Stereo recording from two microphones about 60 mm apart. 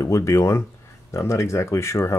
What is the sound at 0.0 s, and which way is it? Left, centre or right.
Speech, left.